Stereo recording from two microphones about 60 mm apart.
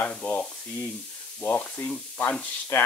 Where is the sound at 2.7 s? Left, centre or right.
Left.